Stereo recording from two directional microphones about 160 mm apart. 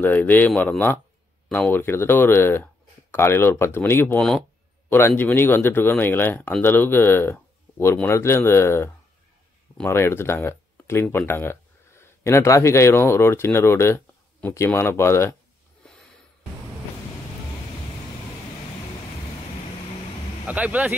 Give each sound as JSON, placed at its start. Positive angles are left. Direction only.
{"t": 0.0, "sound": "speech", "side_deg": 10}
{"t": 15.8, "sound": "a sound", "side_deg": 5}
{"t": 20.4, "sound": "speech", "side_deg": -10}